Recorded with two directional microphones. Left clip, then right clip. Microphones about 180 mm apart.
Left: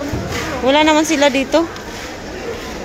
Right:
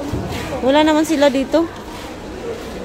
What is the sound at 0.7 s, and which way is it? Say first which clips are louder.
Speech: left 1 dB; 20° right (ahead or behind).